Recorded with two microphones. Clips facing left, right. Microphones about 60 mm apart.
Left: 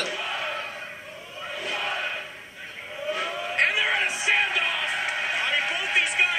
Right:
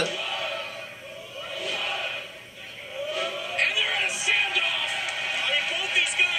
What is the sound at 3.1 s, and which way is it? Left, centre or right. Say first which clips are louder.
Music: left 2 dB; left.